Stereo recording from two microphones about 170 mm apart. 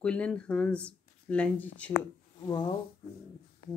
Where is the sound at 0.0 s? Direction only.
5° left (ahead or behind).